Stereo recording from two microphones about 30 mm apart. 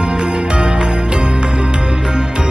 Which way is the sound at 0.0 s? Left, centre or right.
Right.